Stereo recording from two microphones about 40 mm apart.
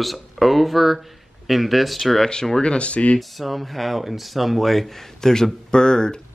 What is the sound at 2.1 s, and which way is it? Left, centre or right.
Speech, centre.